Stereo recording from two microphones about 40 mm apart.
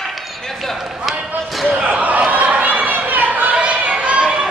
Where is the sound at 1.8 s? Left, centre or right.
Right.